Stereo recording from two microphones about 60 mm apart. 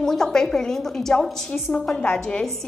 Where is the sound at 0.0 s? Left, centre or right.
Centre.